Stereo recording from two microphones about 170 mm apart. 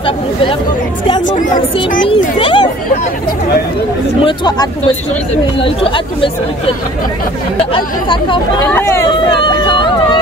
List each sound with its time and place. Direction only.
0.0 s speech: 30° left (ahead or behind)
4.2 s speech: 25° left (ahead or behind)
7.7 s speech: 30° left (ahead or behind)
8.6 s speech: 15° left (ahead or behind)
9.3 s vehicle: 30° left (ahead or behind)